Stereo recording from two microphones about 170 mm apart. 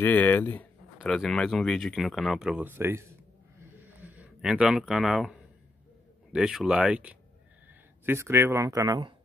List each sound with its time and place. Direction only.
0.0 s speech: 10° left (ahead or behind)
0.9 s speech: centre (ahead or behind); by 9.1 s 20° right (ahead or behind)